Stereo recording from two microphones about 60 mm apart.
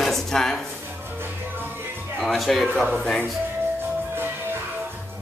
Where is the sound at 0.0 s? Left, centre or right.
Centre.